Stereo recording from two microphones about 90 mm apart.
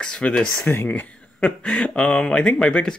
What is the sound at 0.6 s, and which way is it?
Speech, 25° left (ahead or behind).